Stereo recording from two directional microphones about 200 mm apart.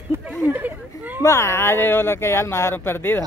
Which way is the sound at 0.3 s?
5° right (ahead or behind).